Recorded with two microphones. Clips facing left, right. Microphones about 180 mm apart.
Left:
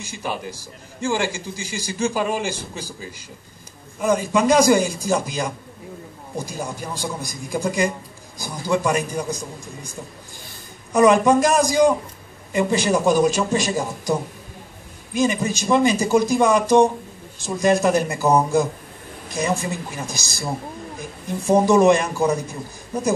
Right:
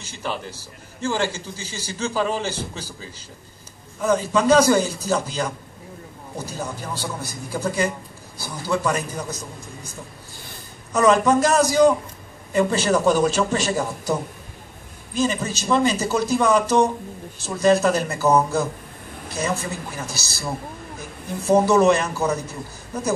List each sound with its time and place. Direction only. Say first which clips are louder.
0.0 s a man's voice: left 1 dB; 10° left (ahead or behind)
10.9 s a man's voice: left 2 dB; 15° left (ahead or behind)
15.1 s a man's voice: left 2 dB; 15° left (ahead or behind)
21.5 s a man's voice: left 1 dB; 15° left (ahead or behind)